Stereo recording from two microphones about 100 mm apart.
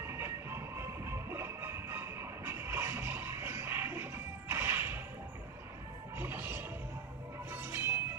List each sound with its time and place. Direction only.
0.0 s music: 25° right (ahead or behind)
6.1 s music: 25° right (ahead or behind)